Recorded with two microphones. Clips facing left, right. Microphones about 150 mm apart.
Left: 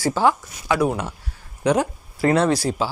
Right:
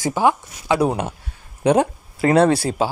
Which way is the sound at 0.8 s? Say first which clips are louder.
Right 1 dB; 30° right (ahead or behind).